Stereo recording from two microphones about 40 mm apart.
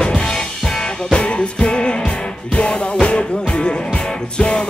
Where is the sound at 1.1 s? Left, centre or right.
Left.